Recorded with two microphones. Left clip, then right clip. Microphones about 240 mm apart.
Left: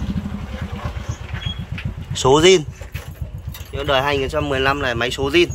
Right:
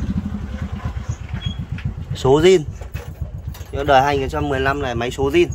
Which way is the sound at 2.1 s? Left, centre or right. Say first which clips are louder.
Left 1 dB; centre.